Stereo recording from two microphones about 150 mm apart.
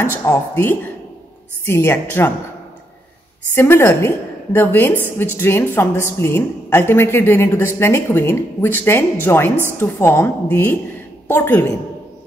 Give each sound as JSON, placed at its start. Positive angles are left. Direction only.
{"t": 0.0, "sound": "a woman's voice", "side_deg": 20}
{"t": 3.5, "sound": "a woman's voice", "side_deg": 15}